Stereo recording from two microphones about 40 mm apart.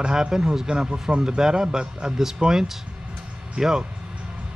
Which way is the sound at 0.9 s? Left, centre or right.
Right.